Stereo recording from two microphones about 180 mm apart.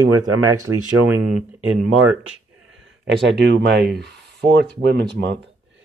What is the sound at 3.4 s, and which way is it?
Speech, 65° right (ahead or behind).